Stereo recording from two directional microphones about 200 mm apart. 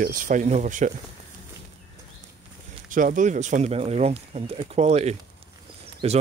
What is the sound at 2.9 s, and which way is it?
Speech, 40° right (ahead or behind).